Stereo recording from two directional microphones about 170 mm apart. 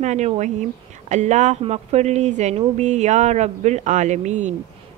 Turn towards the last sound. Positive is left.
turn(degrees=-45)  # may be behind; listen again after turning